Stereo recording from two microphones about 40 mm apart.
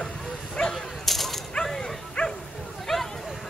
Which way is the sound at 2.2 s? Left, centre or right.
Left.